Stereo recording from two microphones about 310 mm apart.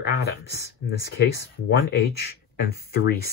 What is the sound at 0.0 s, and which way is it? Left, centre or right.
Speech, left.